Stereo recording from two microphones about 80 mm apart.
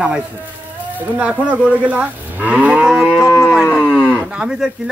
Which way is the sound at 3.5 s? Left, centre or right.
Centre.